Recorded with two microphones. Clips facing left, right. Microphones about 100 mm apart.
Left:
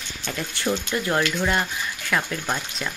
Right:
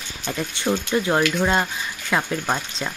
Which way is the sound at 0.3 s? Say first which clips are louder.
Right 2 dB; 20° right (ahead or behind).